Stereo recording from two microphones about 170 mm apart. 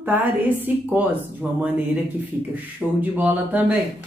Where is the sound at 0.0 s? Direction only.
10° right (ahead or behind).